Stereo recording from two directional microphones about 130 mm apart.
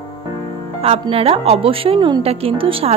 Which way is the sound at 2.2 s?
45° right (ahead or behind).